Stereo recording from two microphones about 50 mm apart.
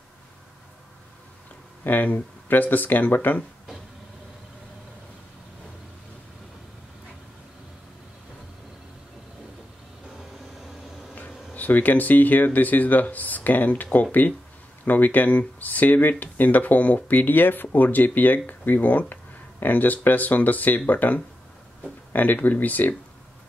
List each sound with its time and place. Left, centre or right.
1.9 s speech: left
11.1 s speech: left